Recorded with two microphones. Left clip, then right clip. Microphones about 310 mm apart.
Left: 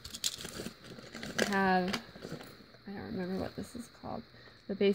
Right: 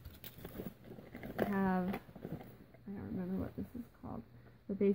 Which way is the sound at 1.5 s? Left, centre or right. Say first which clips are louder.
Left 12 dB; left.